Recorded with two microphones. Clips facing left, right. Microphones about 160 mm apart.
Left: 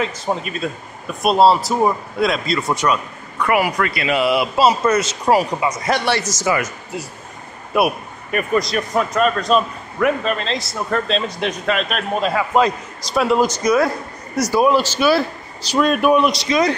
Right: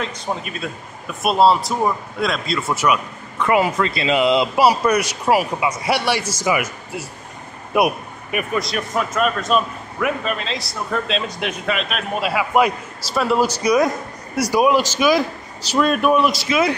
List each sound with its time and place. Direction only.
0.0 s a man's voice: 5° left (ahead or behind)
3.3 s a man's voice: 25° right (ahead or behind)
13.1 s a man's voice: centre (ahead or behind)
13.6 s speech: 15° right (ahead or behind)
15.7 s a man's voice: centre (ahead or behind)